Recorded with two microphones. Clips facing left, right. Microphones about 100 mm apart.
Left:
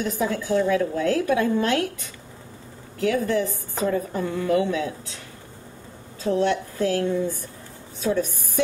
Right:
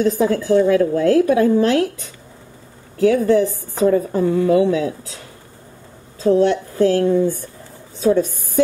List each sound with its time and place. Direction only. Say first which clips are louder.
0.0 s a woman's voice: right 8 dB; 30° right (ahead or behind)
3.0 s a woman's voice: right 8 dB; 25° right (ahead or behind)
3.8 s a woman's voice: right 9 dB; 35° right (ahead or behind)
6.2 s a woman's voice: right 7 dB; 30° right (ahead or behind)